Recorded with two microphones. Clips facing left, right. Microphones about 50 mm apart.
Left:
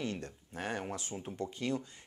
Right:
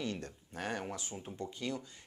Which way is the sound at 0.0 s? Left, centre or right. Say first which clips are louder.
Left 1 dB; left.